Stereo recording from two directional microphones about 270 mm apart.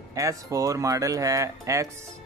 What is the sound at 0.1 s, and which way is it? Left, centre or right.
Speech, centre.